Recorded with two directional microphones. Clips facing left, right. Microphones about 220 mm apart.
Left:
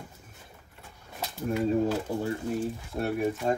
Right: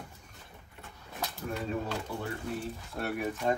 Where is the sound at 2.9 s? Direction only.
15° left (ahead or behind).